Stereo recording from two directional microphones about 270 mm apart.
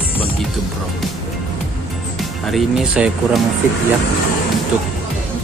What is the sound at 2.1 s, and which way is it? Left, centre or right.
Speech, centre.